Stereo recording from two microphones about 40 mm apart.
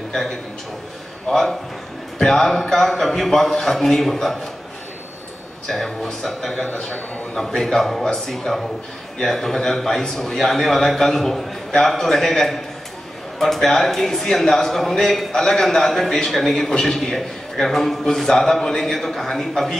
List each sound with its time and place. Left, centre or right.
0.1 s a man's voice: centre
5.9 s a man's voice: centre
6.7 s a man's voice: left
7.5 s a man's voice: centre